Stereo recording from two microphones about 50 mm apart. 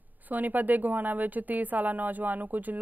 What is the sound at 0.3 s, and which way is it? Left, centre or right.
Speech, right.